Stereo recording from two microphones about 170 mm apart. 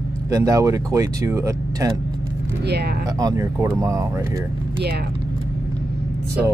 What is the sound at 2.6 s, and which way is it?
Speech, 75° right (ahead or behind).